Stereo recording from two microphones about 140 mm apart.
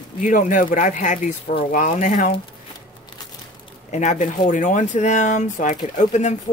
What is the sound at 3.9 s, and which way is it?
Speech, 60° left (ahead or behind).